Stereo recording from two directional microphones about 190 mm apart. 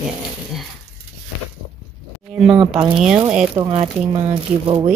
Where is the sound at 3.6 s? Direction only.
25° right (ahead or behind).